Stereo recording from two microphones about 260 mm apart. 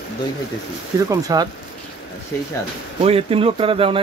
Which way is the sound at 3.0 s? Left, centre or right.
Right.